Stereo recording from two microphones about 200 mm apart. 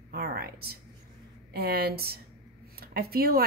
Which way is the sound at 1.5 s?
50° right (ahead or behind).